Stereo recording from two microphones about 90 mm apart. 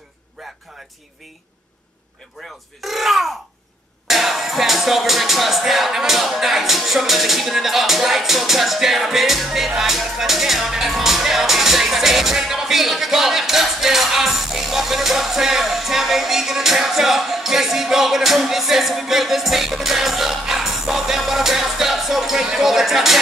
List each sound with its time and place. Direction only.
0.4 s music: centre (ahead or behind)
2.8 s speech: centre (ahead or behind)